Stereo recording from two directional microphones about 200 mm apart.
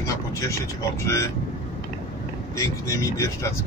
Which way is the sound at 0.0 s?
15° left (ahead or behind).